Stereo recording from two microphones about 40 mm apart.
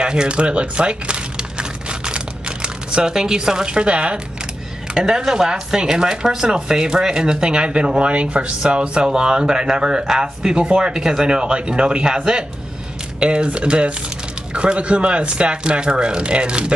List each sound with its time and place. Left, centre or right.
0.0 s crumpling: right
4.9 s speech: centre
13.2 s speech: right